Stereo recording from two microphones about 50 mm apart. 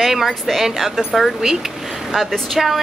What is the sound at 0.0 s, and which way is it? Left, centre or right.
Speech, centre.